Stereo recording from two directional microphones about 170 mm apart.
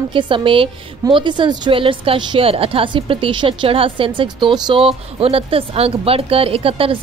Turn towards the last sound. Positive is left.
turn(degrees=-35)  # may be behind; listen again after turning